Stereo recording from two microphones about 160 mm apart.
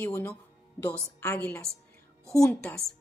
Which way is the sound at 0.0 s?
15° left (ahead or behind).